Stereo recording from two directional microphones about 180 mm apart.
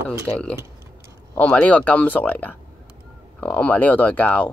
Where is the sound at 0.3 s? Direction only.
5° left (ahead or behind).